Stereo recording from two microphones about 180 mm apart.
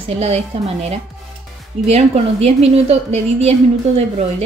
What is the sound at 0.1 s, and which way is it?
A woman's voice, 35° right (ahead or behind).